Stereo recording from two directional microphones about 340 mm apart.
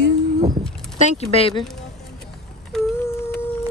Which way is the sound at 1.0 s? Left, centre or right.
Centre.